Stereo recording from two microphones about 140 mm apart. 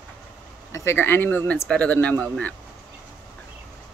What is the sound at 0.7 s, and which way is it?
Speech, 20° left (ahead or behind).